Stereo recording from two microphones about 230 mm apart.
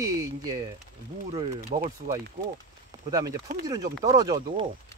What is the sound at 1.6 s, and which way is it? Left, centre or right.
Speech, right.